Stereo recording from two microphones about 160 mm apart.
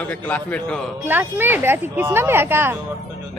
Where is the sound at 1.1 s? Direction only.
10° right (ahead or behind).